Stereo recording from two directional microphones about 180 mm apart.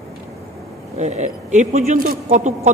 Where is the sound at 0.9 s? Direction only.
40° right (ahead or behind).